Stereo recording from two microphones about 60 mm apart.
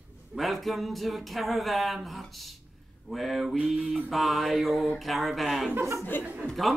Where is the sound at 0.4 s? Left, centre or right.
Centre.